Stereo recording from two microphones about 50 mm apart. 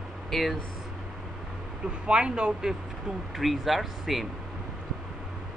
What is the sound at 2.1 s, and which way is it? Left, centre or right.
Speech, centre.